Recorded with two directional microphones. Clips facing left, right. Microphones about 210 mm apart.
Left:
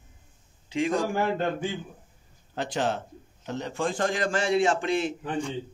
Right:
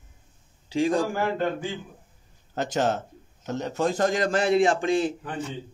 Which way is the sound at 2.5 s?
45° right (ahead or behind).